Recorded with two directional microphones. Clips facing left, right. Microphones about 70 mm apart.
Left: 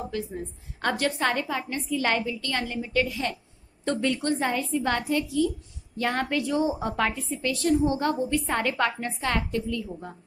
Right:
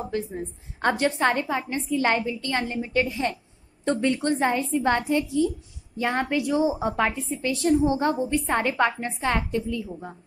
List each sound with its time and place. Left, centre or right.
0.1 s a woman's voice: right